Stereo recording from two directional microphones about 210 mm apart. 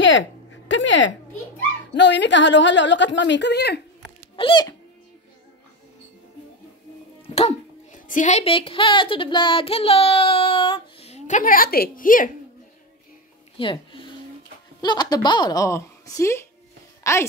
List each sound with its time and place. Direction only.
0.0 s a sound: 60° left (ahead or behind)
2.0 s a woman's voice: 55° left (ahead or behind)
4.4 s speech: 20° left (ahead or behind)
7.3 s speech: 35° left (ahead or behind)
13.6 s a woman's voice: 25° left (ahead or behind)